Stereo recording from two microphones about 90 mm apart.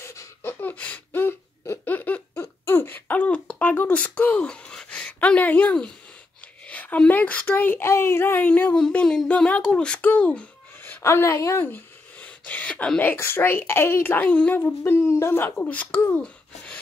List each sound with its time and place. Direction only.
0.0 s a sound: 30° left (ahead or behind)
0.5 s laughter: 20° left (ahead or behind)
2.6 s a sound: 25° left (ahead or behind)
6.6 s speech: 15° left (ahead or behind)
8.7 s a child's voice: 5° left (ahead or behind)
11.0 s speech: 30° left (ahead or behind)
11.7 s a sound: 15° left (ahead or behind)
13.1 s speech: 25° left (ahead or behind)
14.8 s speech: 30° left (ahead or behind)